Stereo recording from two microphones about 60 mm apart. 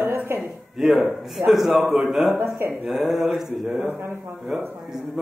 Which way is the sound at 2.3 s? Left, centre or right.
Right.